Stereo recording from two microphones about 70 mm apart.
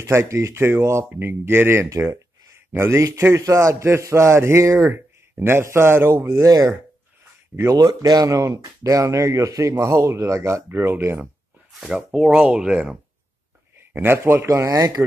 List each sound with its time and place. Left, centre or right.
0.0 s speech: right
4.6 s speech: right
4.9 s a man's voice: right
6.4 s speech: right
8.0 s speech: right
8.5 s speech: right
10.7 s speech: right
11.8 s speech: centre
13.7 s speech: right
14.5 s speech: right